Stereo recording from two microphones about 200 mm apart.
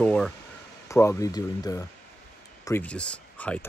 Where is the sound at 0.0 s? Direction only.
5° left (ahead or behind).